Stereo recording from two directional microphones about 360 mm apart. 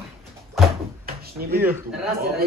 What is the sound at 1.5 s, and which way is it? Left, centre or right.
Speech, centre.